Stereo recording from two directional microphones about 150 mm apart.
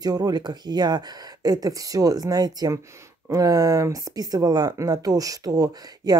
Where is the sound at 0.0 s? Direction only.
25° right (ahead or behind).